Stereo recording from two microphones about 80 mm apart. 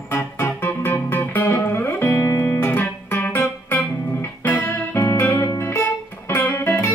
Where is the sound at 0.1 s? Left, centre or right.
Left.